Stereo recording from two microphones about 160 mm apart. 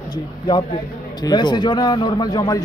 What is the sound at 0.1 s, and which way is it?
A man's voice, 25° left (ahead or behind).